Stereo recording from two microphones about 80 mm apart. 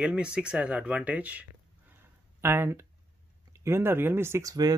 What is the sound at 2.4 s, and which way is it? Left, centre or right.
Speech, right.